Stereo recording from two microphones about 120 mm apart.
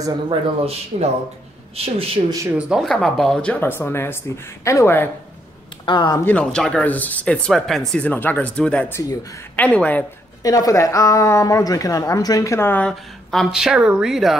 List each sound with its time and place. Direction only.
0.3 s speech: 55° right (ahead or behind)
2.8 s speech: 5° left (ahead or behind)
5.9 s speech: 35° left (ahead or behind)
6.2 s speech: 10° left (ahead or behind)
8.9 s speech: 30° left (ahead or behind)
9.6 s speech: 10° left (ahead or behind)
10.4 s speech: 30° left (ahead or behind)
13.3 s speech: centre (ahead or behind)